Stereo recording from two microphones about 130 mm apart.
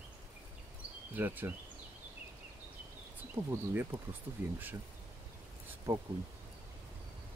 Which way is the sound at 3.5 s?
15° right (ahead or behind).